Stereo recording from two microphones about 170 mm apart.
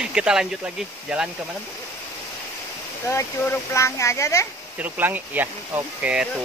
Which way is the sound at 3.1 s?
15° left (ahead or behind).